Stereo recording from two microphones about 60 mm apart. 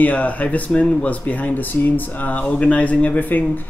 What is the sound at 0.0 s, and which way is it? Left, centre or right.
Speech, left.